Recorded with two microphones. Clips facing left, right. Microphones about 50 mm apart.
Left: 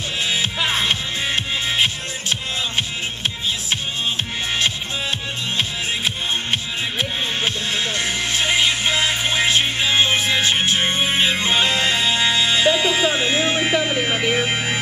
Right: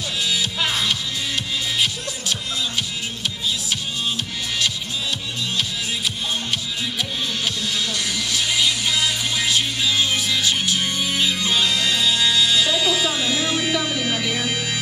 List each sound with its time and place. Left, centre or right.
0.7 s music: left
5.6 s music: left